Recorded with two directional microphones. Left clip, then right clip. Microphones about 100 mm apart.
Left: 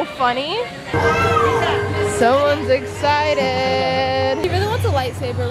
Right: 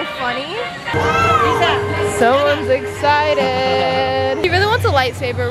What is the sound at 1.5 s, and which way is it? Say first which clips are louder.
Music: right 3 dB; 15° right (ahead or behind).